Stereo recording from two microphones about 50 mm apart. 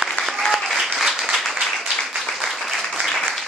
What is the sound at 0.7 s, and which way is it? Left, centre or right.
Applause, centre.